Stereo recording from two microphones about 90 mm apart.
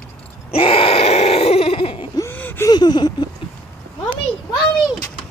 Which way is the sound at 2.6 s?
50° left (ahead or behind).